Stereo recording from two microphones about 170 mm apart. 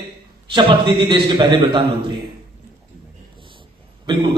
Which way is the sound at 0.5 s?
30° right (ahead or behind).